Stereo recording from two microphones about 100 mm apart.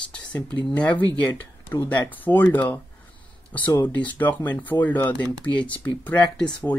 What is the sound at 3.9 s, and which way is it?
Speech, 15° left (ahead or behind).